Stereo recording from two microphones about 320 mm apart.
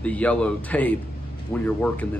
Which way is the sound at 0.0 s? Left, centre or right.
Centre.